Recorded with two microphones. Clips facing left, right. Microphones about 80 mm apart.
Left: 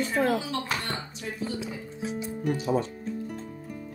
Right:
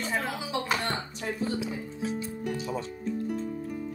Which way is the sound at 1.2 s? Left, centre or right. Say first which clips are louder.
Right 4 dB; right.